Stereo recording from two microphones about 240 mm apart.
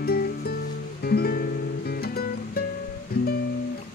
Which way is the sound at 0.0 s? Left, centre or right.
Left.